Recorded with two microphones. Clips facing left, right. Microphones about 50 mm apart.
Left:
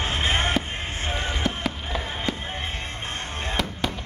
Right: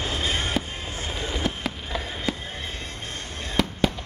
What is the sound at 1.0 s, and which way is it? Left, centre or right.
Fireworks, left.